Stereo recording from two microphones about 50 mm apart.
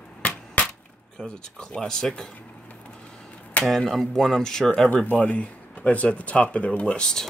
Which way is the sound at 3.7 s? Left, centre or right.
Centre.